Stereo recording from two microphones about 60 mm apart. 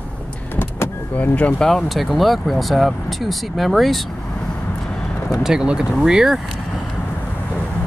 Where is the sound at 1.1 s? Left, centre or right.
Left.